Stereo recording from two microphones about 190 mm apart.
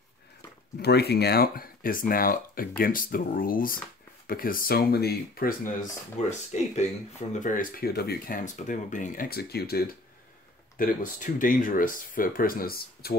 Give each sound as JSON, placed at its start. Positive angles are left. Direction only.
{"t": 0.7, "sound": "speech", "side_deg": 55}
{"t": 10.8, "sound": "speech", "side_deg": 45}